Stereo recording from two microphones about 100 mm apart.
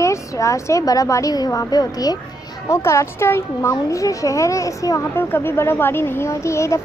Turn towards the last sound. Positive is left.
turn(degrees=30)  # may be behind; listen again after turning